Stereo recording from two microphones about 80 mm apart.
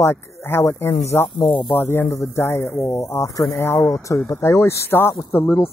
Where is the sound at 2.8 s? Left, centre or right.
Left.